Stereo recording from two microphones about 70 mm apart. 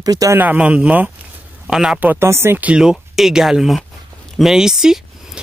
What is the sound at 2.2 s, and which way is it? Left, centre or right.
Speech, right.